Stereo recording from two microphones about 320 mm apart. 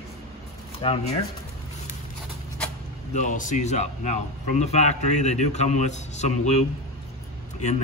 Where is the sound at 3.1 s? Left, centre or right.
Left.